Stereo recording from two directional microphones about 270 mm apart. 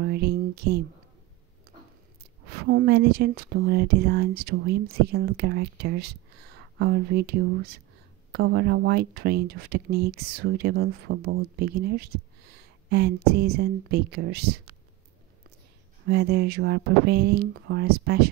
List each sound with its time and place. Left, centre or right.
0.0 s speech: right
2.5 s speech: right
16.1 s speech: right